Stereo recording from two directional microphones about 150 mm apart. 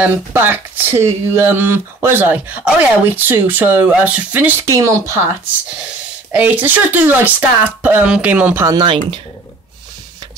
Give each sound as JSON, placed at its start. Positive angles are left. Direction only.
{"t": 0.0, "sound": "speech", "side_deg": -15}
{"t": 6.3, "sound": "speech", "side_deg": -10}
{"t": 8.6, "sound": "speech", "side_deg": -30}